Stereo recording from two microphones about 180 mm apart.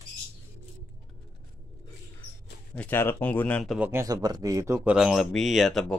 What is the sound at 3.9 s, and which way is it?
Speech, 20° right (ahead or behind).